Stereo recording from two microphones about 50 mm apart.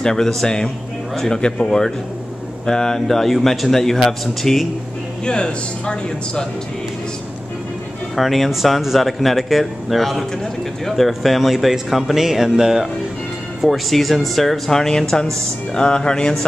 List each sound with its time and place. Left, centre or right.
0.0 s speech: centre
5.2 s speech: centre
8.2 s speech: centre
13.6 s speech: centre